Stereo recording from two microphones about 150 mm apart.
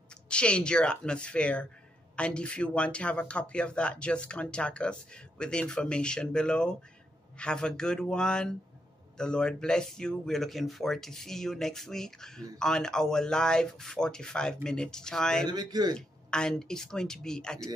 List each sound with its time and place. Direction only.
0.3 s speech: 5° left (ahead or behind)
15.4 s speech: 30° right (ahead or behind)
16.3 s speech: 5° left (ahead or behind)